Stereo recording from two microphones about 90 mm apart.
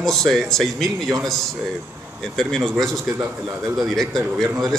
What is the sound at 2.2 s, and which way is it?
Speech, 5° left (ahead or behind).